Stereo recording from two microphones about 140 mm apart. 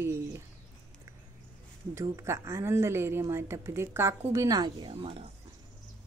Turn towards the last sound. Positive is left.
turn(degrees=-45)  # may be behind; listen again after turning